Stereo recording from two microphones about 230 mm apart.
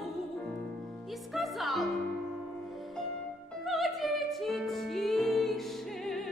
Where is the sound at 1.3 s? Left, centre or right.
Centre.